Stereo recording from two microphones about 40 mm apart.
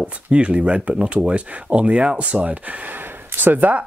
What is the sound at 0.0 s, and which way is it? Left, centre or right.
Speech, right.